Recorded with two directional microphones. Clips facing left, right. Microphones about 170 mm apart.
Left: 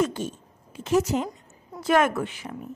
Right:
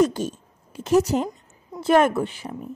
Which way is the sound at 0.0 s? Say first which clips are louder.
Right 5 dB; 40° right (ahead or behind).